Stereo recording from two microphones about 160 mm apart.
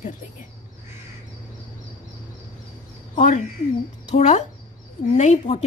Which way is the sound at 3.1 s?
50° left (ahead or behind).